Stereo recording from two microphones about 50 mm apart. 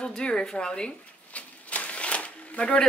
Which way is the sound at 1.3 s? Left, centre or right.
Left.